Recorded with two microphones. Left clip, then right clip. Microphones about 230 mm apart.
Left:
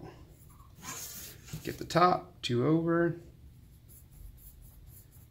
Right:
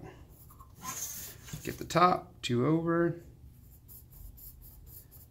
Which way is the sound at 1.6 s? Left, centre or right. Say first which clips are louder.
Even; centre.